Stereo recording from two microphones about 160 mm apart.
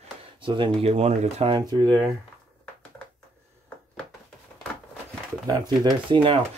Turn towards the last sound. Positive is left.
turn(degrees=-30)  # may be behind; listen again after turning